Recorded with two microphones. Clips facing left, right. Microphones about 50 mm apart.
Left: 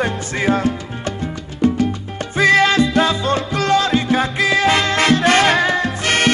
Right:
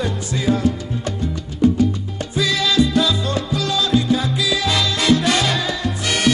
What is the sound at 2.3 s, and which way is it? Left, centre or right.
Music, left.